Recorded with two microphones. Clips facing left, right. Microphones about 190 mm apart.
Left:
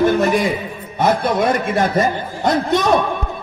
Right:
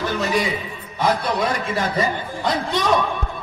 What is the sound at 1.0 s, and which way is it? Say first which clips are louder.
A man's voice: left 4 dB; 55° left (ahead or behind).